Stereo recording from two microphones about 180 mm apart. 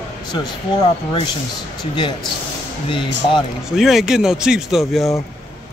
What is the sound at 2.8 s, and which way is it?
Speech, 30° left (ahead or behind).